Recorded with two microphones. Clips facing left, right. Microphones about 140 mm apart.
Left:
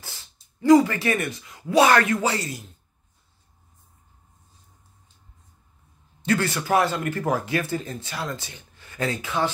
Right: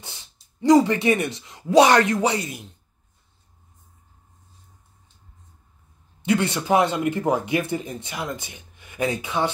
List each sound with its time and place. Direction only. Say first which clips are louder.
0.0 s speech: right 1 dB; 20° right (ahead or behind)
6.2 s speech: right 2 dB; 20° right (ahead or behind)